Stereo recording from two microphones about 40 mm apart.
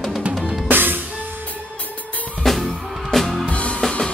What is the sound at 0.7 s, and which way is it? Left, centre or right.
Music, right.